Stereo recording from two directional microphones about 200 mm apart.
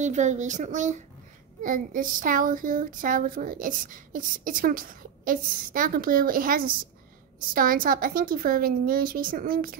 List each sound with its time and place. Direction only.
0.0 s speech: 35° right (ahead or behind)